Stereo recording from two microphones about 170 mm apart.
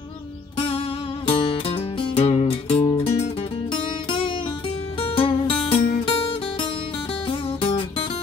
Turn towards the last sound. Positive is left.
turn(degrees=30)  # may be behind; listen again after turning